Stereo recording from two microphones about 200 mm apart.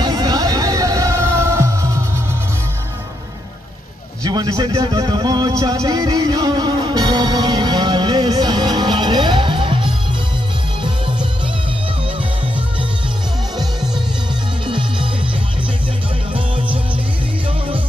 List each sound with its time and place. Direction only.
0.0 s music: 20° right (ahead or behind)
4.2 s a man's voice: 20° right (ahead or behind)
14.7 s music: 25° right (ahead or behind)
16.3 s music: 25° right (ahead or behind)